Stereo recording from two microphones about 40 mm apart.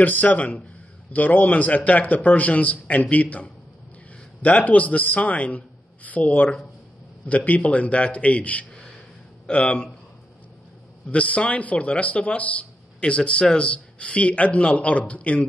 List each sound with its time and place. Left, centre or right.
0.0 s a man's voice: left
11.1 s a man's voice: left